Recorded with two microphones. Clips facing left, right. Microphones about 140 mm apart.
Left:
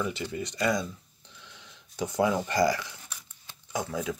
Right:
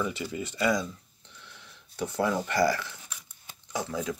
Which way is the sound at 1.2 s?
15° left (ahead or behind).